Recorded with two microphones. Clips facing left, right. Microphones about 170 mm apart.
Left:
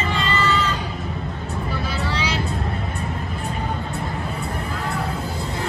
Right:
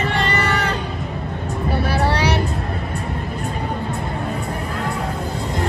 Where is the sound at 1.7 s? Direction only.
65° right (ahead or behind).